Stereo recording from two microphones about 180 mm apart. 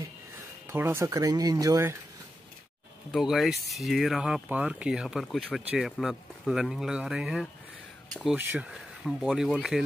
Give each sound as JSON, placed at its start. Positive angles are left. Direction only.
{"t": 0.7, "sound": "speech", "side_deg": -15}
{"t": 3.1, "sound": "speech", "side_deg": 0}
{"t": 8.4, "sound": "speech", "side_deg": -10}
{"t": 8.7, "sound": "speech", "side_deg": 0}